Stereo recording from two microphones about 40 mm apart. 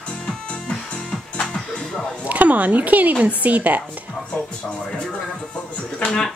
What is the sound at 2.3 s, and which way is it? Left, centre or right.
Speech, right.